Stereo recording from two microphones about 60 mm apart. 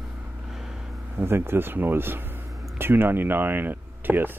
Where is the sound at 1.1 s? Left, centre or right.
Right.